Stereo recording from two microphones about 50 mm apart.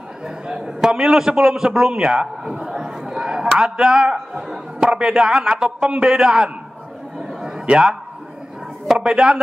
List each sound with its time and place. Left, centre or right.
0.5 s a man's voice: centre
7.6 s a man's voice: centre
8.9 s a man's voice: centre